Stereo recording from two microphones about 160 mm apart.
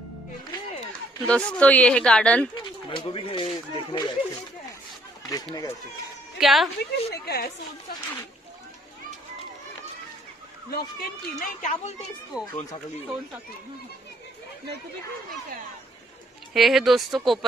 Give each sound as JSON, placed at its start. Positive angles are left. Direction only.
{"t": 1.2, "sound": "speech", "side_deg": 5}
{"t": 2.9, "sound": "speech", "side_deg": 30}
{"t": 5.3, "sound": "speech", "side_deg": 25}
{"t": 6.4, "sound": "speech", "side_deg": 0}
{"t": 6.8, "sound": "a woman's voice", "side_deg": 90}
{"t": 10.7, "sound": "speech", "side_deg": 75}
{"t": 12.3, "sound": "speech", "side_deg": -5}
{"t": 16.5, "sound": "speech", "side_deg": 0}